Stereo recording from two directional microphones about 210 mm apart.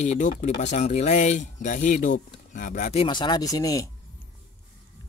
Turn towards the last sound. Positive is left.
turn(degrees=15)  # may be behind; listen again after turning